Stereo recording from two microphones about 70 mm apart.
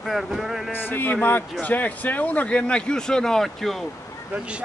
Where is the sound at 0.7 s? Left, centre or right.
Left; by 3.8 s centre.